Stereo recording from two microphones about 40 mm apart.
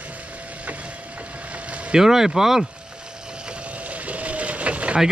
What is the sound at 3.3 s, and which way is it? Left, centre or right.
Vehicle, right.